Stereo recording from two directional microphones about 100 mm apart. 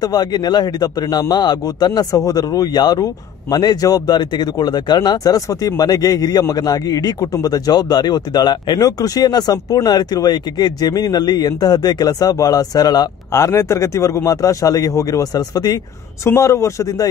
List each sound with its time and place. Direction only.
0.0 s a man's voice: 45° left (ahead or behind)
13.3 s speech: 30° left (ahead or behind)